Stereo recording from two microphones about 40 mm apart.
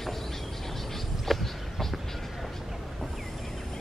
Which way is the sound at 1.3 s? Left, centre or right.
Centre.